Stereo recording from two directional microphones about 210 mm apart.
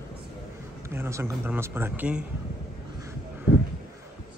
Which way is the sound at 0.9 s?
10° right (ahead or behind).